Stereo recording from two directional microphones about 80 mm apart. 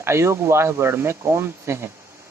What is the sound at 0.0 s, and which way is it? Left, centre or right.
Speech, right.